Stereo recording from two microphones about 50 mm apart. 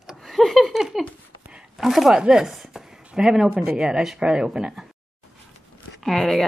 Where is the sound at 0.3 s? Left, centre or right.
Centre.